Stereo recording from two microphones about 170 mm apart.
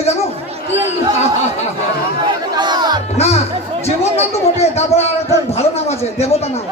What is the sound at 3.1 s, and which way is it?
A man's voice, 40° left (ahead or behind).